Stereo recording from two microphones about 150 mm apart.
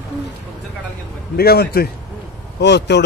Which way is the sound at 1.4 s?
90° left.